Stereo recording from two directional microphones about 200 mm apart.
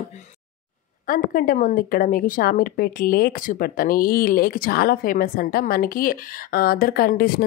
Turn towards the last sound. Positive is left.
turn(degrees=50)  # may be behind; listen again after turning